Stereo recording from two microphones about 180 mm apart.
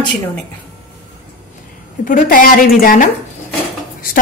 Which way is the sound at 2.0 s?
50° left (ahead or behind).